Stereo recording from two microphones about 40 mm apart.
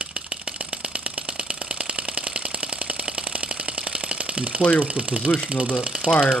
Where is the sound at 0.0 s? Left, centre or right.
Right.